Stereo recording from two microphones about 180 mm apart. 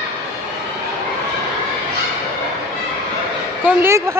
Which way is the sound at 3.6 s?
15° right (ahead or behind).